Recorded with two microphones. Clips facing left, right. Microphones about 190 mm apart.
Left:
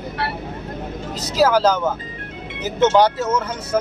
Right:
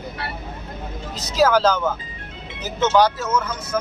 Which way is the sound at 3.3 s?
35° left (ahead or behind).